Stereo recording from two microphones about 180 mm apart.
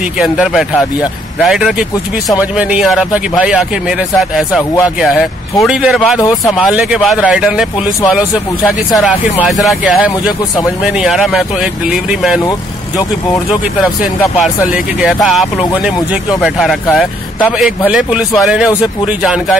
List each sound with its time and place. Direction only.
0.2 s speech: 5° right (ahead or behind)
6.1 s speech: 15° left (ahead or behind)
6.5 s speech: centre (ahead or behind)
8.9 s speech: centre (ahead or behind)
14.4 s speech: 5° right (ahead or behind)